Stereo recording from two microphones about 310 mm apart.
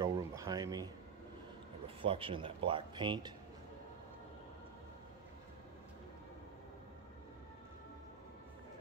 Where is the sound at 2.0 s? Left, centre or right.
Centre.